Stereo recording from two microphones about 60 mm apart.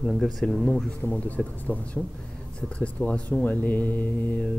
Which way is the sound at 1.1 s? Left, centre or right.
Left.